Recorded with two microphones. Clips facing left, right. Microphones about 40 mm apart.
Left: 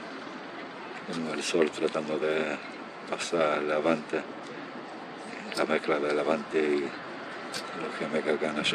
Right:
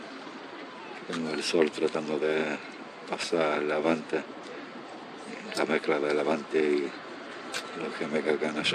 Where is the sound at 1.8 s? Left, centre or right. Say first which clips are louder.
Even; left.